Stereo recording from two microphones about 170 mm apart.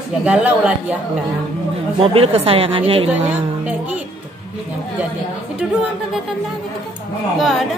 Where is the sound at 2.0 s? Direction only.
35° right (ahead or behind).